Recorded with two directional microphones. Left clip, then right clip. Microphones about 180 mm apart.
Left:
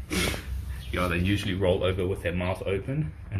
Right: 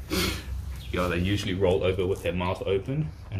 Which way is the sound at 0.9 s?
10° left (ahead or behind).